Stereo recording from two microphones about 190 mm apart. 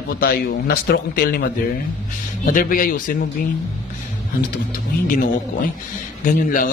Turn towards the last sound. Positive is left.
turn(degrees=45)  # may be behind; listen again after turning